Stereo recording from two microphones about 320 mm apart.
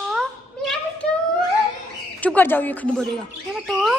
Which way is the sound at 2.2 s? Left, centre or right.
Centre.